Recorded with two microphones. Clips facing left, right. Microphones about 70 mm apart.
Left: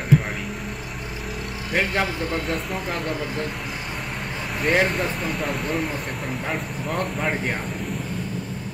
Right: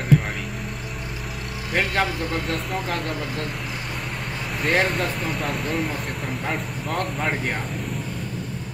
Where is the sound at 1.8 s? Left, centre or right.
Centre.